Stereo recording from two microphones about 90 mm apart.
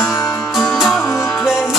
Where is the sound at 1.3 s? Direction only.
5° right (ahead or behind).